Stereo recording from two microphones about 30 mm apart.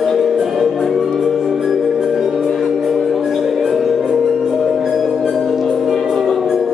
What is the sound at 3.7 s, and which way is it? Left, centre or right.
Music, centre.